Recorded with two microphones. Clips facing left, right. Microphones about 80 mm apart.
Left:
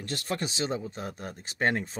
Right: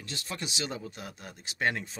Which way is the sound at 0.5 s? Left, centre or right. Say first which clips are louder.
Left 5 dB; left.